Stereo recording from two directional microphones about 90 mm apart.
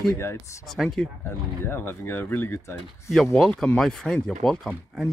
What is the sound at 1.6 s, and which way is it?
Speech, 25° left (ahead or behind).